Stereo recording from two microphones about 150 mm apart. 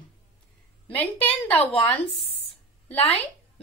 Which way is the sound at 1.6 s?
40° left (ahead or behind).